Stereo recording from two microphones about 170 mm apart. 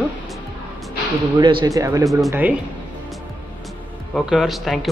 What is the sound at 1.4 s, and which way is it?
Speech, 25° right (ahead or behind).